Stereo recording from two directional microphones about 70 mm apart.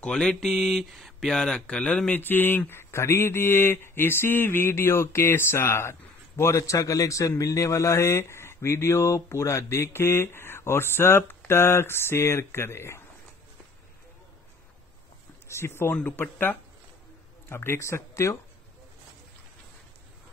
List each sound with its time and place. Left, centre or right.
0.0 s speech: centre
1.4 s speech: centre; by 13.0 s left
15.4 s speech: left